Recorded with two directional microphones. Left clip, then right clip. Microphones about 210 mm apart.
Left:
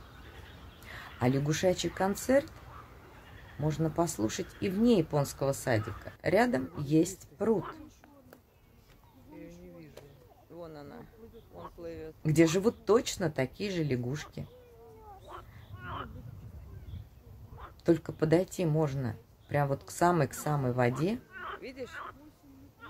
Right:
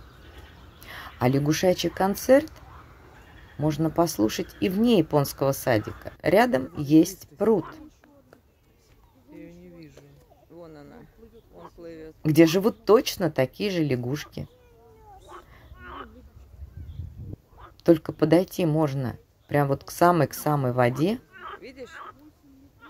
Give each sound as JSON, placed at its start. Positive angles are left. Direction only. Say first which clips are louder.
{"t": 0.8, "sound": "speech", "louder": "right 6 dB", "side_deg": -25}
{"t": 3.6, "sound": "speech", "louder": "right 7 dB", "side_deg": -25}
{"t": 10.5, "sound": "bird", "louder": "right 1 dB", "side_deg": 10}
{"t": 11.5, "sound": "a sound", "louder": "right 1 dB", "side_deg": 5}
{"t": 12.2, "sound": "speech", "louder": "right 7 dB", "side_deg": -25}
{"t": 15.2, "sound": "a sound", "louder": "right 4 dB", "side_deg": -15}
{"t": 17.8, "sound": "speech", "louder": "right 8 dB", "side_deg": -25}
{"t": 21.4, "sound": "speech", "louder": "right 1 dB", "side_deg": 0}